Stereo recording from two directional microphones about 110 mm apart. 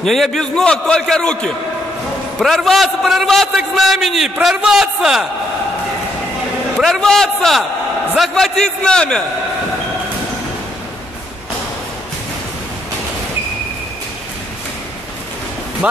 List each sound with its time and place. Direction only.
0.0 s a man's voice: centre (ahead or behind)
6.8 s a man's voice: 5° left (ahead or behind)
15.8 s music: 10° right (ahead or behind)